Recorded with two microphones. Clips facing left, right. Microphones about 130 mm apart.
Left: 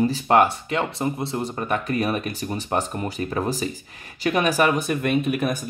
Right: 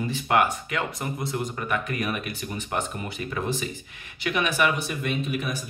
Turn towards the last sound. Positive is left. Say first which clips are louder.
# left 6 dB
turn(degrees=50)  # may be behind; listen again after turning